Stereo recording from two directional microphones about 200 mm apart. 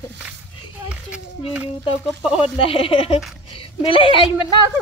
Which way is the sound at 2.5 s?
30° left (ahead or behind).